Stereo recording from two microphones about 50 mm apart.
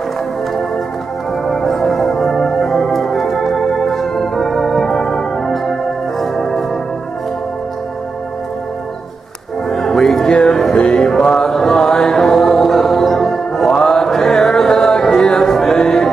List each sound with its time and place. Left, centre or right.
1.5 s organ: centre
9.7 s music: centre